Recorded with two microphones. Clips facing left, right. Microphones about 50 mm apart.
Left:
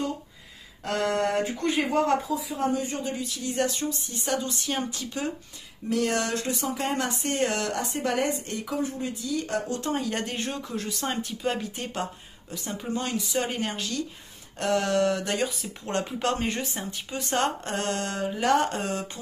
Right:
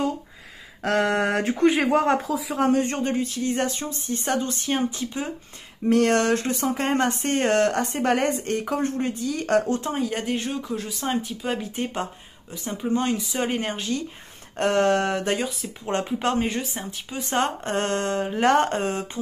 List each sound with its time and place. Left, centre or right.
0.9 s speech: right
2.2 s speech: right
4.7 s speech: right
5.9 s speech: right
9.8 s speech: centre
11.7 s speech: right
13.4 s speech: right
14.6 s speech: right
15.3 s speech: centre
16.1 s speech: centre
16.4 s speech: centre
17.2 s speech: centre
17.6 s speech: right